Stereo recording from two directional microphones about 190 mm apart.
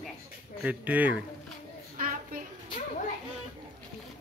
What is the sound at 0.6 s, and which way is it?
Speech, 10° right (ahead or behind).